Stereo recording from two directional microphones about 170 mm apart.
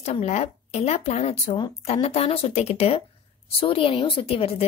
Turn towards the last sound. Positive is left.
turn(degrees=35)  # may be behind; listen again after turning